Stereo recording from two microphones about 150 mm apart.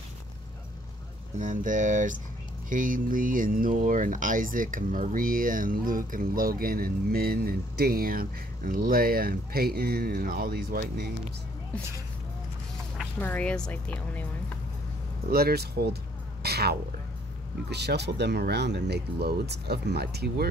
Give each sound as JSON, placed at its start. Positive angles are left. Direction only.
{"t": 1.4, "sound": "speech", "side_deg": -60}
{"t": 13.2, "sound": "speech", "side_deg": 10}
{"t": 15.2, "sound": "speech", "side_deg": -90}